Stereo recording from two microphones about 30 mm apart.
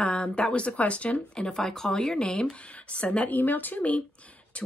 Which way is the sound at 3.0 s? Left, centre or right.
Left.